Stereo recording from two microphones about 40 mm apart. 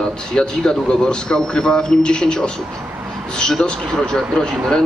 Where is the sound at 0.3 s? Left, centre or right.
Centre.